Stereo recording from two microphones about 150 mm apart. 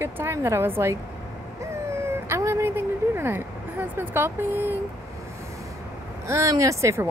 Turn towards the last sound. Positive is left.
turn(degrees=-20)  # may be behind; listen again after turning